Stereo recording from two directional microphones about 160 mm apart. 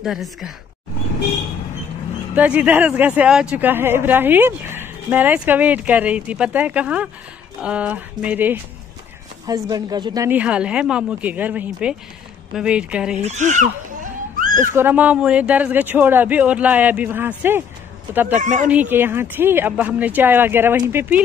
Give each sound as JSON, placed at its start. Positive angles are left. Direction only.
{"t": 0.0, "sound": "speech", "side_deg": 0}
{"t": 2.3, "sound": "speech", "side_deg": -5}
{"t": 9.5, "sound": "speech", "side_deg": -25}
{"t": 10.3, "sound": "speech", "side_deg": -10}
{"t": 13.2, "sound": "speech", "side_deg": -45}
{"t": 14.4, "sound": "a sound", "side_deg": -55}
{"t": 14.8, "sound": "speech", "side_deg": -10}
{"t": 18.4, "sound": "speech", "side_deg": -50}
{"t": 18.7, "sound": "speech", "side_deg": -10}